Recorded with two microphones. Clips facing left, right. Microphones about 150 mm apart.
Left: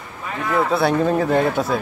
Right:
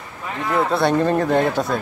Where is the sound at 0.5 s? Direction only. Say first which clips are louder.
Even; centre (ahead or behind).